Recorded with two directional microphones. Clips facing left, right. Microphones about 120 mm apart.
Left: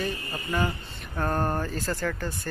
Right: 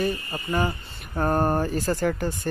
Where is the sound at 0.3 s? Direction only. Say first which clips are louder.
Right 3 dB; 20° right (ahead or behind).